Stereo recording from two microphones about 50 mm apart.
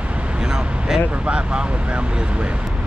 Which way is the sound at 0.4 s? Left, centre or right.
Centre.